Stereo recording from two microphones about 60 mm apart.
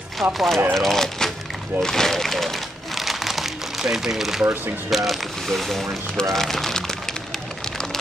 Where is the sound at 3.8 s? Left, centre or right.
Centre.